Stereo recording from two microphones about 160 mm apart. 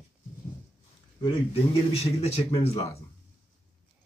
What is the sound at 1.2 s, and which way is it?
A man's voice, 40° left (ahead or behind).